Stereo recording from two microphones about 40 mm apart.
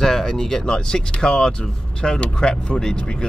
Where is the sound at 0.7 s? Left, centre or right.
Left.